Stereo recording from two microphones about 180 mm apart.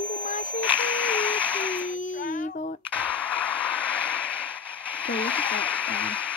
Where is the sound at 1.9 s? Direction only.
45° left (ahead or behind).